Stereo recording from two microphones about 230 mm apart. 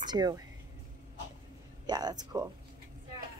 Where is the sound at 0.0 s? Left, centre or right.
Centre.